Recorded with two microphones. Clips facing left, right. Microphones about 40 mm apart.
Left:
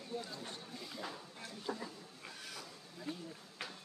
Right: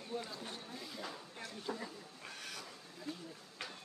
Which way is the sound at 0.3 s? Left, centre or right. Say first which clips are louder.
Right 1 dB; centre.